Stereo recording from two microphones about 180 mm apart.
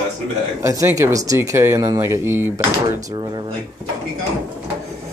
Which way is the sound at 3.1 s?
25° right (ahead or behind).